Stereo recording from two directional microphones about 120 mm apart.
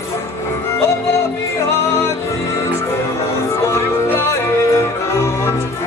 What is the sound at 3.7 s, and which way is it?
Music, 20° left (ahead or behind).